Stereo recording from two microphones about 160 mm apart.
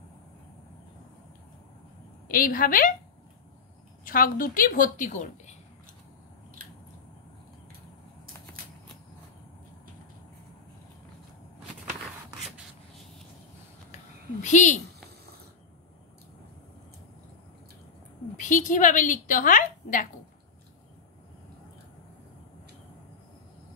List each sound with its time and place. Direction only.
2.2 s a woman's voice: 60° left (ahead or behind)
4.0 s speech: 60° left (ahead or behind)
13.9 s a sound: 50° left (ahead or behind)
18.4 s a woman's voice: 50° left (ahead or behind)